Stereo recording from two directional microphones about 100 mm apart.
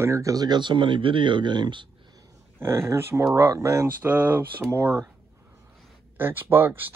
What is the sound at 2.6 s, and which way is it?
Speech, 25° right (ahead or behind).